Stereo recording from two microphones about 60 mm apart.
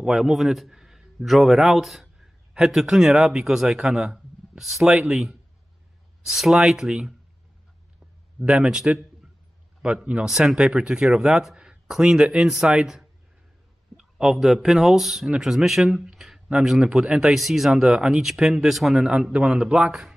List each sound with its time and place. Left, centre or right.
0.0 s a man's voice: centre
4.8 s speech: centre
6.2 s speech: centre
8.4 s a man's voice: centre